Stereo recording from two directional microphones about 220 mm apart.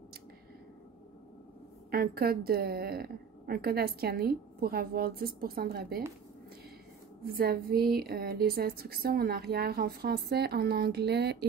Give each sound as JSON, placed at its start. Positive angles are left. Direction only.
{"t": 1.9, "sound": "a woman's voice", "side_deg": -45}
{"t": 7.2, "sound": "a woman's voice", "side_deg": -45}